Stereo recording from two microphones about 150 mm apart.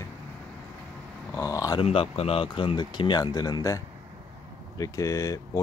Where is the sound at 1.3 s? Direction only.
20° left (ahead or behind).